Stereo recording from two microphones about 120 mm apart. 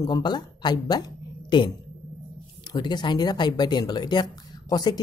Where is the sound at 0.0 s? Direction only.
35° left (ahead or behind).